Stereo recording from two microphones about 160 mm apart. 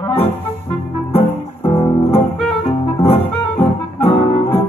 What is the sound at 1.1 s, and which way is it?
Music, 35° left (ahead or behind).